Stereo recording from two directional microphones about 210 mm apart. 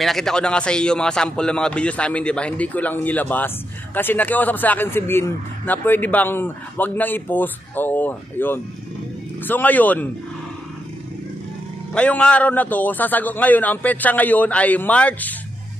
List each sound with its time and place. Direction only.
0.0 s speech: centre (ahead or behind)
11.9 s speech: 5° left (ahead or behind)